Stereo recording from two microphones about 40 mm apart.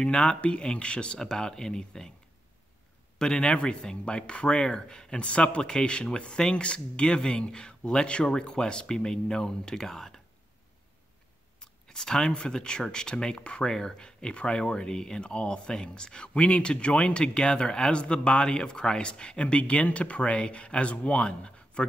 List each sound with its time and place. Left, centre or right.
0.0 s speech: left
1.2 s speech: centre
3.2 s speech: centre
11.6 s speech: centre